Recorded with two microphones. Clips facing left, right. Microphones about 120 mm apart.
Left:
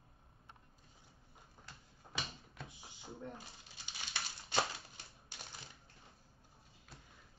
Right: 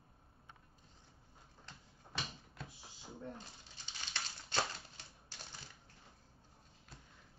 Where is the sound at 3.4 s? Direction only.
10° left (ahead or behind).